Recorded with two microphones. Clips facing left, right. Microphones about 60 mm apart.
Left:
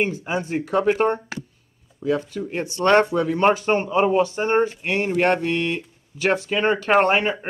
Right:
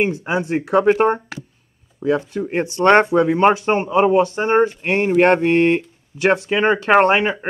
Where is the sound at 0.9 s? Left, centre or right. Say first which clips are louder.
Right 4 dB; centre.